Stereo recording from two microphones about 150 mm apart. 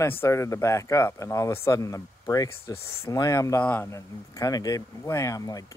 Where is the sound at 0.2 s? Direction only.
20° left (ahead or behind).